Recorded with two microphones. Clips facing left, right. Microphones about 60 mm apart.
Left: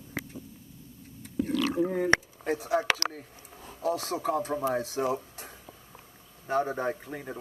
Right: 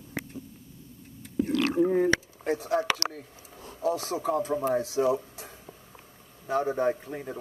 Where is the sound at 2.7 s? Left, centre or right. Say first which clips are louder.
Even; left.